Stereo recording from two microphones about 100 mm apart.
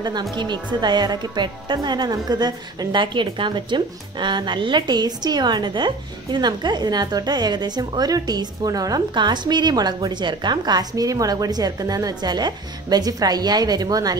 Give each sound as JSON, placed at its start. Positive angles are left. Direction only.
{"t": 0.0, "sound": "speech", "side_deg": -45}